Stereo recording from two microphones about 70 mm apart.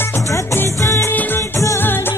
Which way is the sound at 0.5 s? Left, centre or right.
Left.